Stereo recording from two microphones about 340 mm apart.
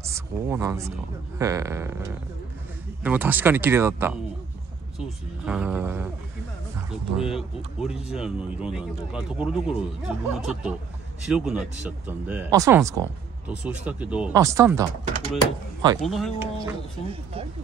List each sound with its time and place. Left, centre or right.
0.0 s speech: centre
7.2 s speech: centre
16.0 s speech: centre
16.6 s speech: centre